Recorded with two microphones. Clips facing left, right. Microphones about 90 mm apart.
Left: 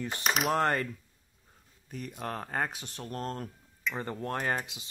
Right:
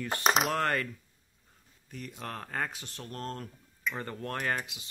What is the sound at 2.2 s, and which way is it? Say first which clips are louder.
Speech: left 3 dB; 25° left (ahead or behind).